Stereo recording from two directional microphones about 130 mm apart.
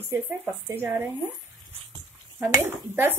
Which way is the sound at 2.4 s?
20° right (ahead or behind).